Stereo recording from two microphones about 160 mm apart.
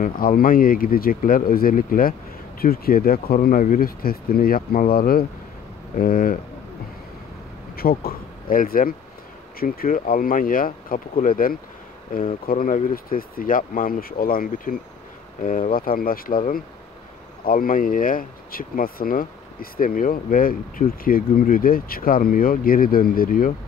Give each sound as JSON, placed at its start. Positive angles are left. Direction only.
{"t": 0.0, "sound": "speech", "side_deg": 60}
{"t": 7.7, "sound": "speech", "side_deg": 70}